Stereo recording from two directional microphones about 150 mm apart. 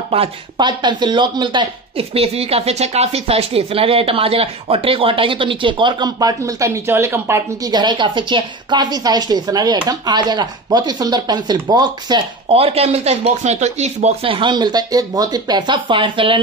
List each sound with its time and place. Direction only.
0.1 s speech: 35° right (ahead or behind)